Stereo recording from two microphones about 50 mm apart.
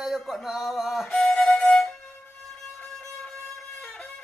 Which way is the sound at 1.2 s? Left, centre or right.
Centre.